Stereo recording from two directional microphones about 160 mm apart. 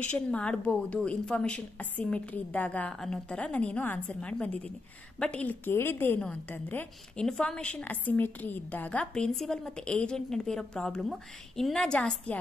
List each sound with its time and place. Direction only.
0.0 s a woman's voice: 10° left (ahead or behind)